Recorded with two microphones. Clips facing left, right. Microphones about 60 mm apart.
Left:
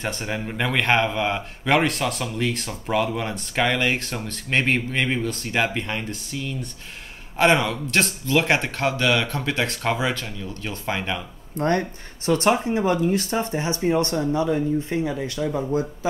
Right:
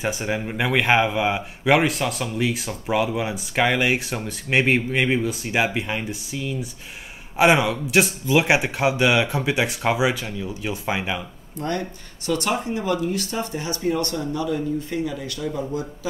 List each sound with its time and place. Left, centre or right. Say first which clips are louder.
0.0 s speech: right 3 dB; centre
11.5 s a man's voice: left 5 dB; left